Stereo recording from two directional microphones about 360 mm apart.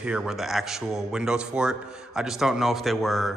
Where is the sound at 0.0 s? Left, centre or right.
Centre.